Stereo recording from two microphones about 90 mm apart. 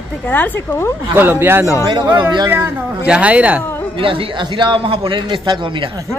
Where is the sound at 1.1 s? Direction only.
25° right (ahead or behind).